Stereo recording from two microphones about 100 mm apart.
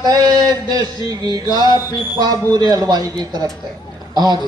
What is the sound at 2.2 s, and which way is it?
Speech, 40° right (ahead or behind).